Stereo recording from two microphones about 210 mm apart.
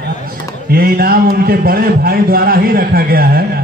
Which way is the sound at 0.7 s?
45° right (ahead or behind).